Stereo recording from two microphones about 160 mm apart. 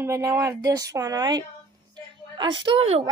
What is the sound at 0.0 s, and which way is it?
A woman's voice, 20° right (ahead or behind).